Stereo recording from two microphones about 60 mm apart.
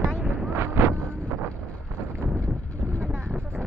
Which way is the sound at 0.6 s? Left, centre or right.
Right.